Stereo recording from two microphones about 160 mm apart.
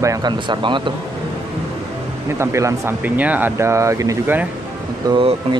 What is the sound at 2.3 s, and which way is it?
Speech, 15° right (ahead or behind).